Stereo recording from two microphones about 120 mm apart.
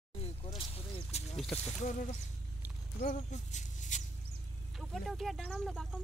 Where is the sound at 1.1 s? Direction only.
65° left (ahead or behind).